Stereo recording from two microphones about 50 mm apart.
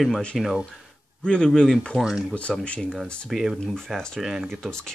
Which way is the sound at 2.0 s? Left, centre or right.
Centre.